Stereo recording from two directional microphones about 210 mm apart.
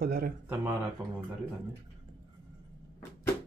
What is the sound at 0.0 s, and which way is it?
Speech, 45° right (ahead or behind).